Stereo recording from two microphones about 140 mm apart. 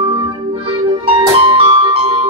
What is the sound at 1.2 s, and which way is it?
Music, 40° right (ahead or behind).